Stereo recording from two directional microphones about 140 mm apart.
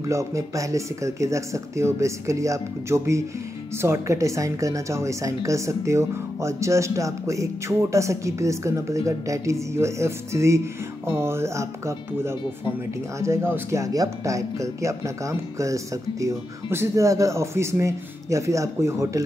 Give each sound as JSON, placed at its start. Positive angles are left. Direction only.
{"t": 0.0, "sound": "a woman's voice", "side_deg": -20}